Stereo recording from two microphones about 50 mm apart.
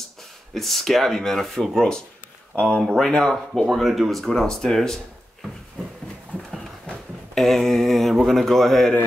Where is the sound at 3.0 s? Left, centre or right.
Centre.